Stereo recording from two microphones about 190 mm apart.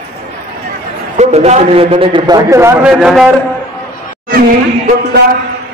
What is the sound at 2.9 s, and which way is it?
Speech, centre (ahead or behind).